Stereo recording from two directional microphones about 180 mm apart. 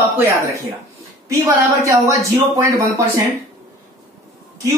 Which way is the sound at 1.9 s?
20° right (ahead or behind).